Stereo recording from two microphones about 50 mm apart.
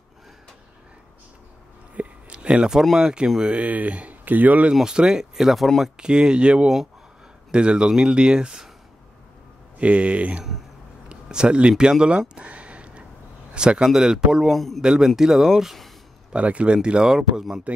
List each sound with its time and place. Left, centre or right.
2.0 s a sound: right
2.8 s speech: centre
3.4 s speech: right
4.7 s speech: centre
5.9 s speech: centre
9.8 s speech: right
14.5 s speech: centre
14.8 s speech: centre
16.3 s speech: right; by 17.6 s centre